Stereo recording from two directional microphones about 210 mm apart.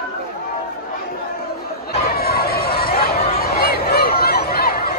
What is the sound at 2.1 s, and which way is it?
Chatter, 45° left (ahead or behind).